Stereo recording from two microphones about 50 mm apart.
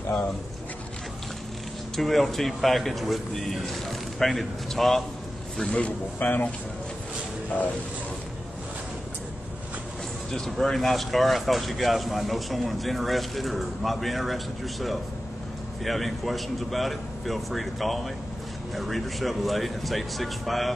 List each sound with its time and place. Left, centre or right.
2.0 s speech: centre
5.7 s a man's voice: left
10.3 s speech: centre